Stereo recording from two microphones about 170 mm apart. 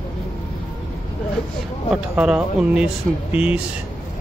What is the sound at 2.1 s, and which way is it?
Speech, 5° right (ahead or behind).